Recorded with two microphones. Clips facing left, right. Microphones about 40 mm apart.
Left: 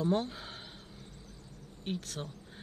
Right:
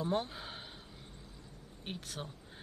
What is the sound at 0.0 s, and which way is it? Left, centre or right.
Speech, centre.